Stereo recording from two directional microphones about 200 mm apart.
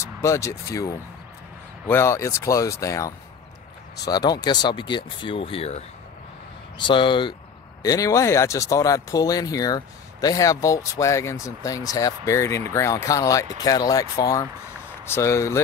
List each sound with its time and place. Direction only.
0.0 s speech: 15° left (ahead or behind)